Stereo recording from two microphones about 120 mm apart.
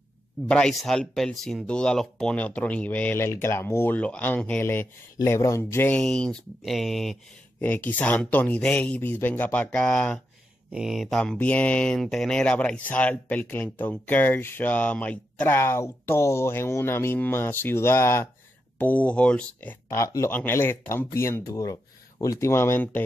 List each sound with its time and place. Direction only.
0.5 s speech: 5° left (ahead or behind)
7.6 s speech: 15° left (ahead or behind)
10.7 s speech: 5° right (ahead or behind); by 19.8 s 10° left (ahead or behind)
19.9 s speech: 25° left (ahead or behind)